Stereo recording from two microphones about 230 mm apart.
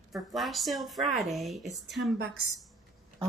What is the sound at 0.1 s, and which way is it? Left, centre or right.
Speech, centre.